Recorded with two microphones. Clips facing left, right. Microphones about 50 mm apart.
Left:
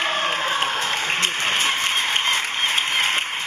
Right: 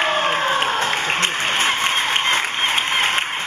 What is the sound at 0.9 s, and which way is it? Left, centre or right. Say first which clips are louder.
Applause: right 3 dB; centre.